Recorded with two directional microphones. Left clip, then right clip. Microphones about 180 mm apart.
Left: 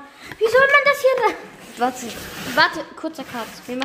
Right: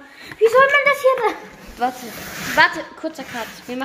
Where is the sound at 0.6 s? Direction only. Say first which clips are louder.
Left 3 dB; 50° left (ahead or behind).